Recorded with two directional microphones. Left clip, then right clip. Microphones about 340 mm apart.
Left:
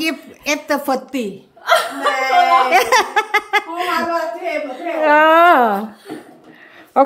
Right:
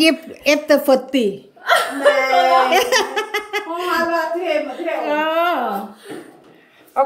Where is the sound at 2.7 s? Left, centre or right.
Centre.